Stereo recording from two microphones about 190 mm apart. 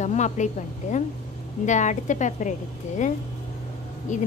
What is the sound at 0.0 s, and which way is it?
Speech, 40° left (ahead or behind).